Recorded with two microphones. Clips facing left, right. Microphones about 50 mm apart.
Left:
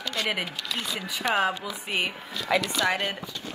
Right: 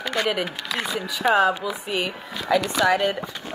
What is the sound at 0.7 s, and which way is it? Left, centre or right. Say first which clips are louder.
Speech: right 5 dB; right.